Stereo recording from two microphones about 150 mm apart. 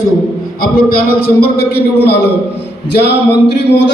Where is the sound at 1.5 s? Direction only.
90° left.